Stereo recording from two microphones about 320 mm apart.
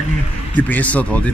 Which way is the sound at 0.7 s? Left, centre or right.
Centre.